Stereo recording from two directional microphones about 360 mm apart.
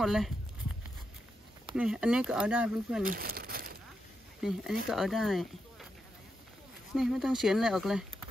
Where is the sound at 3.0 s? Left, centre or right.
Right.